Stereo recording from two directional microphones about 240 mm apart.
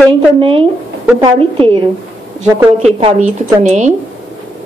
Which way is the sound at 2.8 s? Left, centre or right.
Right.